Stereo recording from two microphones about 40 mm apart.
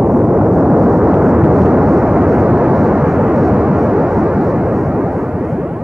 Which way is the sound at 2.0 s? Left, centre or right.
Centre.